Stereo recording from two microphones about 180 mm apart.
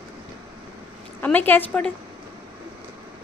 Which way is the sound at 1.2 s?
10° left (ahead or behind).